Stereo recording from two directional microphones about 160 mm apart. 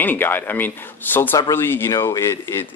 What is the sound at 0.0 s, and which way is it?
Speech, 10° left (ahead or behind).